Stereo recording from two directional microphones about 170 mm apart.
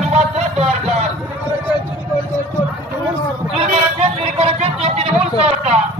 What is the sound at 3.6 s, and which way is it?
Vehicle, 40° right (ahead or behind).